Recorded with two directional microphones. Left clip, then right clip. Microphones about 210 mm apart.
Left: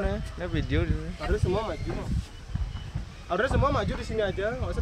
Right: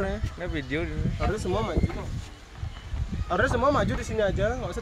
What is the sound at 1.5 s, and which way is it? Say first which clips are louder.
Speech: even; 55° right (ahead or behind).